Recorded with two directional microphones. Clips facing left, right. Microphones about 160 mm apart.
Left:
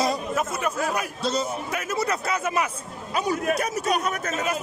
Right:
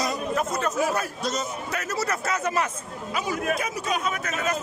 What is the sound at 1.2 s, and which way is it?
Speech, 30° left (ahead or behind).